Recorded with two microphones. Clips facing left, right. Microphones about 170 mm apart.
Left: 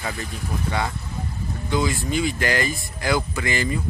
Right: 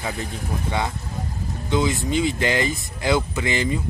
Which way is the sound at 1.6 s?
20° right (ahead or behind).